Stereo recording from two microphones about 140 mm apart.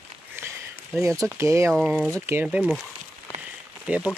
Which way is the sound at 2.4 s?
5° right (ahead or behind).